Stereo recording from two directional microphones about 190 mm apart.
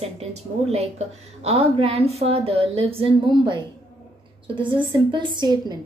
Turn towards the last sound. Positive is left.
turn(degrees=-20)  # may be behind; listen again after turning